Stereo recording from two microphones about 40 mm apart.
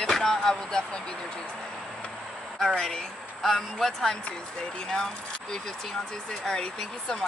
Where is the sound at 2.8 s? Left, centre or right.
Centre.